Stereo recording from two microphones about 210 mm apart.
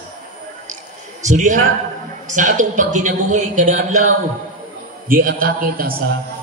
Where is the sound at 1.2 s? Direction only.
35° right (ahead or behind).